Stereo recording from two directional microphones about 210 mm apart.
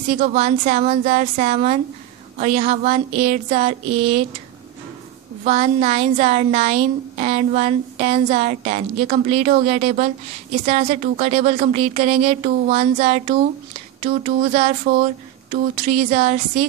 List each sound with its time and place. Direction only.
0.1 s a woman's voice: 35° right (ahead or behind)
5.4 s a woman's voice: 30° right (ahead or behind)